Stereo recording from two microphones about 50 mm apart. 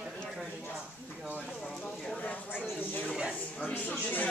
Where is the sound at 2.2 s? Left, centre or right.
Left.